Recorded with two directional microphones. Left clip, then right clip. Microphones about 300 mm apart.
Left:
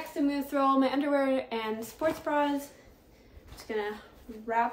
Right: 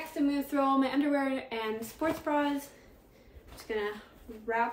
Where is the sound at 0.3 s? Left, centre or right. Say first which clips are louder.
Left 2 dB; centre.